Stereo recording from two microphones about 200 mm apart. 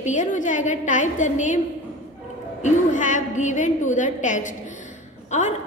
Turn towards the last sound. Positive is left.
turn(degrees=35)  # may be behind; listen again after turning